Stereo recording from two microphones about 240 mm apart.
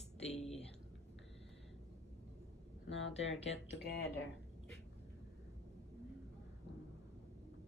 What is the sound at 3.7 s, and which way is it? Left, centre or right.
Speech, left.